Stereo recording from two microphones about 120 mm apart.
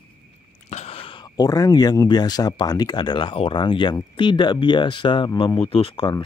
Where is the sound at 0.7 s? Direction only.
60° left (ahead or behind).